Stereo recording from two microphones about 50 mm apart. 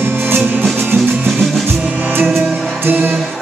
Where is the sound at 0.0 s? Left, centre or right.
Right.